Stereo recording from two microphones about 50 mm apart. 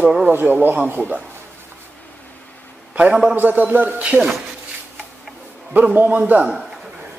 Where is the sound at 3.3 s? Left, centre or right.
Right.